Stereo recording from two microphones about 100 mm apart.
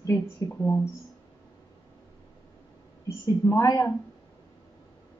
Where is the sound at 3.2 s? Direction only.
30° left (ahead or behind).